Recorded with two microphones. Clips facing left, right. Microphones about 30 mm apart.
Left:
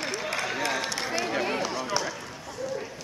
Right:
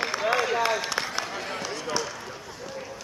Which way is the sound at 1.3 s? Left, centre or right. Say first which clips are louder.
Left 5 dB; centre.